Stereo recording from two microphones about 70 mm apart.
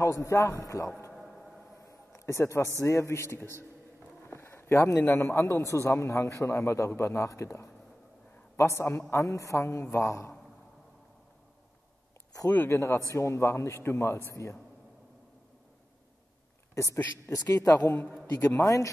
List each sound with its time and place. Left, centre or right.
0.2 s speech: left
1.1 s a sound: centre
1.8 s a man's voice: left
4.3 s a sound: left
5.0 s a man's voice: left
12.4 s speech: left
12.7 s a man's voice: left
16.7 s speech: left
18.6 s speech: left